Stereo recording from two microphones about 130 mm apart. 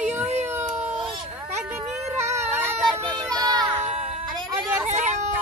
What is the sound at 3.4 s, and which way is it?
Music, 30° right (ahead or behind).